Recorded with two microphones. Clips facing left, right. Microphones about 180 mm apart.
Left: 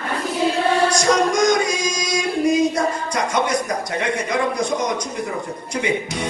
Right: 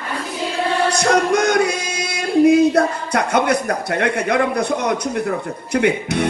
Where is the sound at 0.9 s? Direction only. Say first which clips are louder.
Right 1 dB; 60° right (ahead or behind).